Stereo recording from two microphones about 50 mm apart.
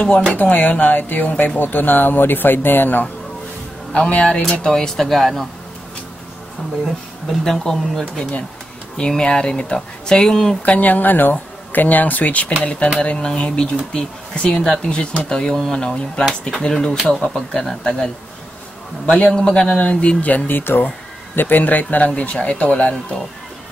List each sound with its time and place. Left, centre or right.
0.4 s speech: left
3.9 s speech: centre
7.4 s speech: centre
8.2 s speech: left
10.6 s speech: left; by 17.6 s centre
19.3 s speech: centre